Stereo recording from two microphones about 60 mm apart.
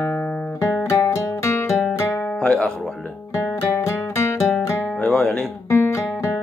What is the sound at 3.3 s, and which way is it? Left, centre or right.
Music, left.